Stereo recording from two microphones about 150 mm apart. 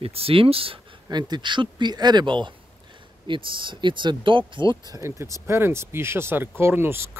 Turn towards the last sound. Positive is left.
turn(degrees=-15)  # may be behind; listen again after turning